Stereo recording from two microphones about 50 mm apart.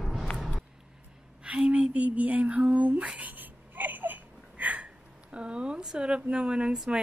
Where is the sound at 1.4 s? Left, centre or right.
Right.